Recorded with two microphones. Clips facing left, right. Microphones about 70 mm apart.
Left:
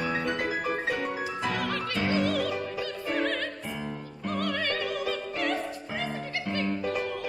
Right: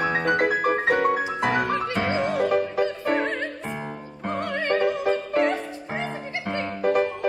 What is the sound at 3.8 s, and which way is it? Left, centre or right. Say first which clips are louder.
Music: right 2 dB; right.